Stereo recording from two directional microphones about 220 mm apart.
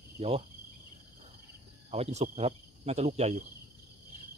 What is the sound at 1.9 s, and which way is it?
Speech, 30° right (ahead or behind).